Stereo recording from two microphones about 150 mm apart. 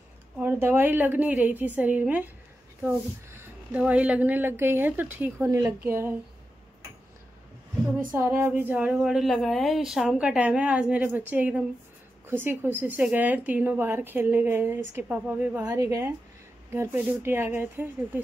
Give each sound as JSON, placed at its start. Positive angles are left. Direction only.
{"t": 0.4, "sound": "a woman's voice", "side_deg": -15}
{"t": 8.1, "sound": "a woman's voice", "side_deg": -15}
{"t": 15.6, "sound": "a woman's voice", "side_deg": -20}